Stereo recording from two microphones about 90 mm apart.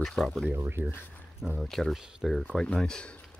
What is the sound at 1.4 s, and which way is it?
Speech, 5° right (ahead or behind).